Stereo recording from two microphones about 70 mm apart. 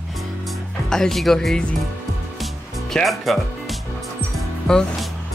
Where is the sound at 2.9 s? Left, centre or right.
Centre.